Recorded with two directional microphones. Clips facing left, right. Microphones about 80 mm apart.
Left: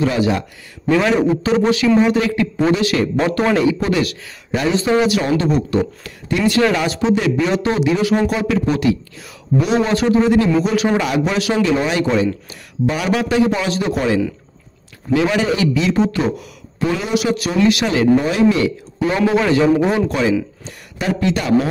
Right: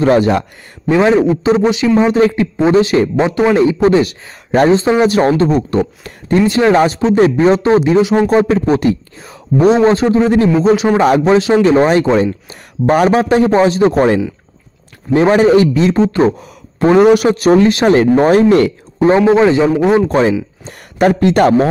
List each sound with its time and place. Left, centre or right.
0.0 s a man's voice: right
0.8 s a man's voice: right
2.0 s a man's voice: right
3.3 s a man's voice: centre
3.5 s a man's voice: right
8.0 s a man's voice: right
8.3 s a man's voice: right
19.0 s a man's voice: right
20.1 s a man's voice: right